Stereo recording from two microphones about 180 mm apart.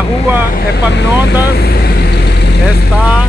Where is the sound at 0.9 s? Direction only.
70° left (ahead or behind).